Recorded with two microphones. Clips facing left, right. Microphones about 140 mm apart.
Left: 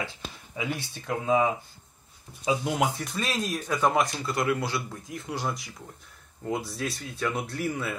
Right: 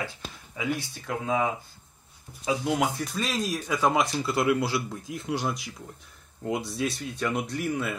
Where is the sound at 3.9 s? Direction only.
20° right (ahead or behind).